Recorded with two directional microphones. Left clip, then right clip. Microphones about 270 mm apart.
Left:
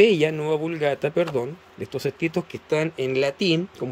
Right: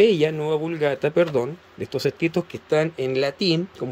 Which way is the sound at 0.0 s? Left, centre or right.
Centre.